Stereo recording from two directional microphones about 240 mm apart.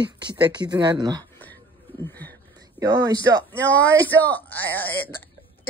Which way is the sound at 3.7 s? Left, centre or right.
Centre.